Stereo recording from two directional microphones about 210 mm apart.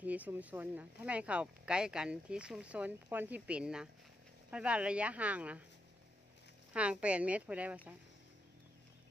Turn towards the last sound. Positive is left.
turn(degrees=-5)  # may be behind; listen again after turning